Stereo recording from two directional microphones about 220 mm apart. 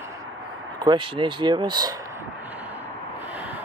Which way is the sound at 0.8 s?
20° right (ahead or behind).